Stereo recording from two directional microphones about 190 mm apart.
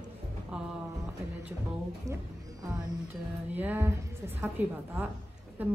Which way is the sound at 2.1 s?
20° right (ahead or behind).